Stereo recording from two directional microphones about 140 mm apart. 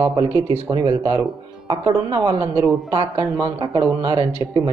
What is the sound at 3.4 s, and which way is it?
Speech, 30° right (ahead or behind).